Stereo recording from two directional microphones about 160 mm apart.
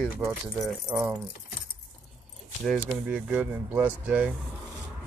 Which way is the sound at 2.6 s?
5° right (ahead or behind).